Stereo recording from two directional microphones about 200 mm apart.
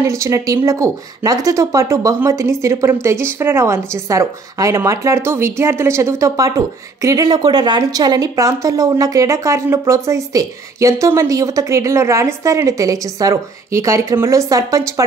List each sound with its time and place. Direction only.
0.0 s a woman's voice: 15° right (ahead or behind)